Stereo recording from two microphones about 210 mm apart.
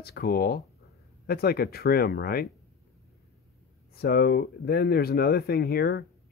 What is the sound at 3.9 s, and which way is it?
Speech, 45° left (ahead or behind).